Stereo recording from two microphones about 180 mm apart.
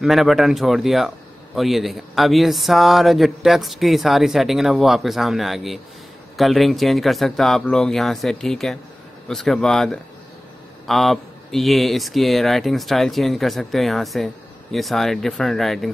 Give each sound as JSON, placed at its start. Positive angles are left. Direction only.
{"t": 0.0, "sound": "a man's voice", "side_deg": 0}